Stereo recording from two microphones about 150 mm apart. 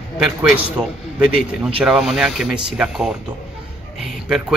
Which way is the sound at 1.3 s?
5° right (ahead or behind).